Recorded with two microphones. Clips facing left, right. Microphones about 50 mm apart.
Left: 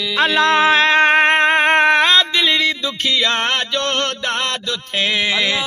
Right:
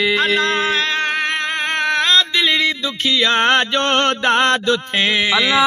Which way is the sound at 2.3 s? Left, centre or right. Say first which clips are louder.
Even; centre.